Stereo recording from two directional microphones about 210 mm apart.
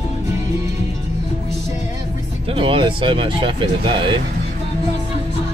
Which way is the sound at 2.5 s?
25° right (ahead or behind).